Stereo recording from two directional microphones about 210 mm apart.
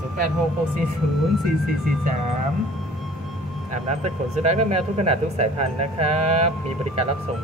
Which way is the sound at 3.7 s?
30° right (ahead or behind).